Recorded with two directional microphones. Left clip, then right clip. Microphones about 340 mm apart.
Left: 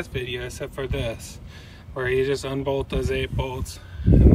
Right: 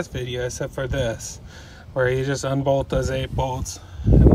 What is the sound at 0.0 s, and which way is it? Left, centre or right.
Speech, centre.